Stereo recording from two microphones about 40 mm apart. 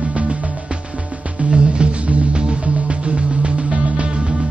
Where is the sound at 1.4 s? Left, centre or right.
Right.